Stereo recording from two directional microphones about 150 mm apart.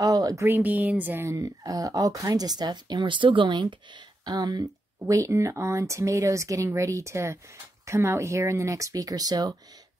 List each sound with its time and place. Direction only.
0.0 s speech: 25° right (ahead or behind)